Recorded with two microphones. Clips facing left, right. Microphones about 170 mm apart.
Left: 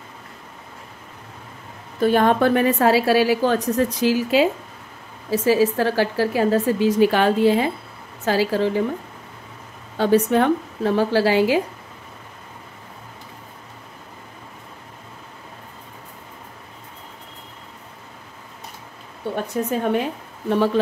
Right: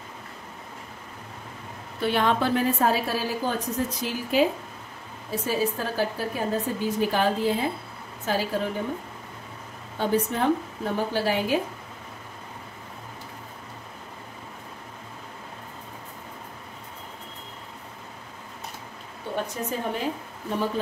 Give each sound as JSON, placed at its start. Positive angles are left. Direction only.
{"t": 2.0, "sound": "a woman's voice", "side_deg": 45}
{"t": 8.3, "sound": "a woman's voice", "side_deg": 90}
{"t": 9.9, "sound": "a woman's voice", "side_deg": 85}
{"t": 19.5, "sound": "a woman's voice", "side_deg": 65}
{"t": 20.4, "sound": "speech", "side_deg": 75}